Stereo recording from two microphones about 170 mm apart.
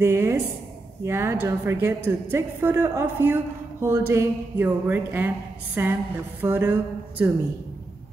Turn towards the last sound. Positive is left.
turn(degrees=-10)  # may be behind; listen again after turning